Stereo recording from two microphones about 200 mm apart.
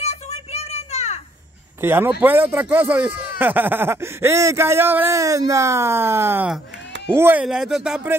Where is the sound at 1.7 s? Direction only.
10° right (ahead or behind).